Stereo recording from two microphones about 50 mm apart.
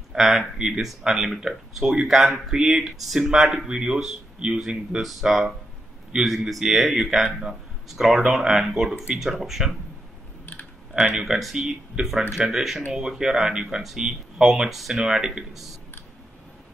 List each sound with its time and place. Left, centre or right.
0.1 s speech: centre
10.4 s typing: left
11.0 s speech: centre